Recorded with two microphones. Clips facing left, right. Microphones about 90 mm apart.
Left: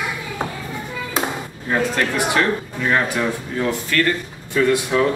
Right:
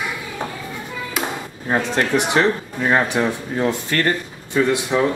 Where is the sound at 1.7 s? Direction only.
25° right (ahead or behind).